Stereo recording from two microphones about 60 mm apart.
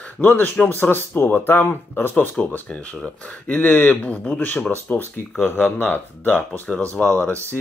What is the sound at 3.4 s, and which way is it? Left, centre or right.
Speech, left.